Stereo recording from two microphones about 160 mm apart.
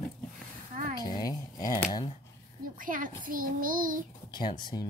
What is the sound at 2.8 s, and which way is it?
A child's voice, 55° right (ahead or behind).